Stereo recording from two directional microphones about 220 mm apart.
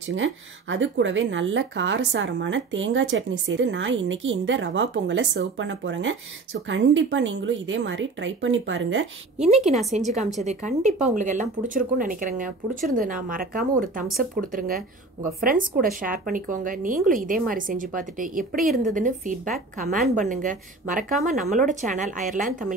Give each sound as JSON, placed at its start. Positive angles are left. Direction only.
{"t": 0.1, "sound": "speech", "side_deg": -55}
{"t": 9.4, "sound": "a woman's voice", "side_deg": -30}